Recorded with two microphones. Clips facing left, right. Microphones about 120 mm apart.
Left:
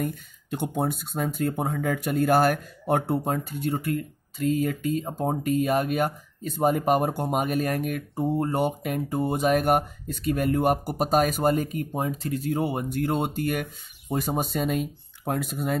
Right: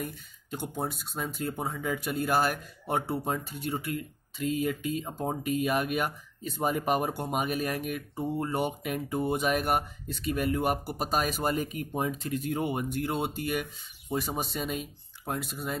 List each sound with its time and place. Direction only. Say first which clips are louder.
0.0 s speech: left 7 dB; 60° left (ahead or behind)